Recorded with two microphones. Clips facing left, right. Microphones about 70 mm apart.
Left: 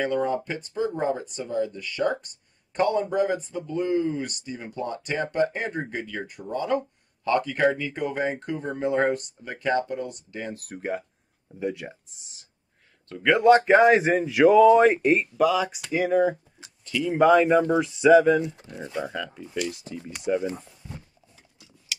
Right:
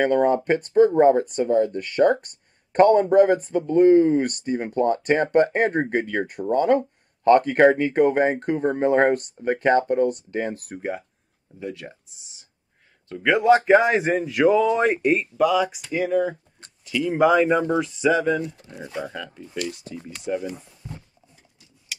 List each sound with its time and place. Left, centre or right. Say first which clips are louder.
0.0 s speech: right 6 dB; right
10.7 s speech: right 1 dB; centre
11.6 s speech: left 3 dB; centre
13.1 s speech: even; centre
16.3 s a sound: left 3 dB; centre
16.8 s speech: right 1 dB; centre
18.4 s speech: even; left
19.1 s speech: left 1 dB; centre
20.8 s a sound: right 4 dB; centre